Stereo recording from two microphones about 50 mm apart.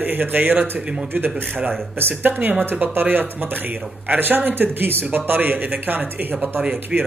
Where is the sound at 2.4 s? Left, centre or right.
Right.